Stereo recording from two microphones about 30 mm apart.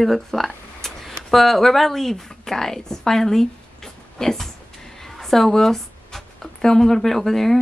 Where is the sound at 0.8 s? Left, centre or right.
Centre.